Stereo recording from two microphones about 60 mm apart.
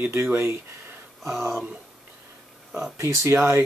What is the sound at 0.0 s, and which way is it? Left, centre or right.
Speech, right.